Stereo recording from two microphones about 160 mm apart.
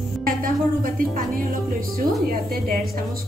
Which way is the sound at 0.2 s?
60° right (ahead or behind).